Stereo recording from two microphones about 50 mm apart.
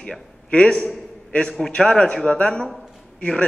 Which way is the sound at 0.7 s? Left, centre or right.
Centre.